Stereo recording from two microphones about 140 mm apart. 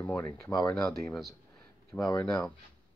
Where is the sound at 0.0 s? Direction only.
15° left (ahead or behind).